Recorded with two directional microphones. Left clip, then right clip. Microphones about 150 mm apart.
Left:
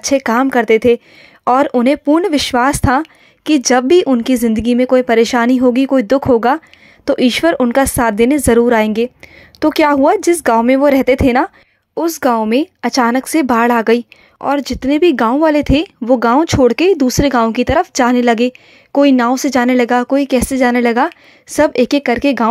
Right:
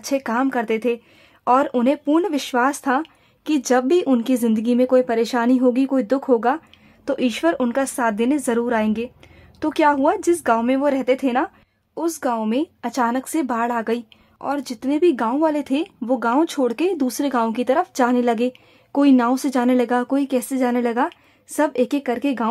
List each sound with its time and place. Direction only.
0.0 s speech: 30° left (ahead or behind)